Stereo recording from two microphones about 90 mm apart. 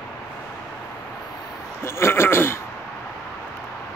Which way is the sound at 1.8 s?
30° left (ahead or behind).